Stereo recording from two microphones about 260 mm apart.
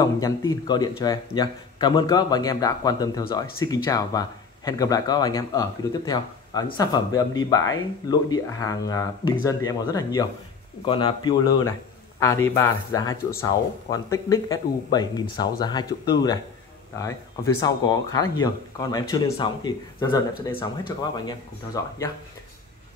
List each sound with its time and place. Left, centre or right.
0.0 s a man's voice: centre
17.6 s speech: centre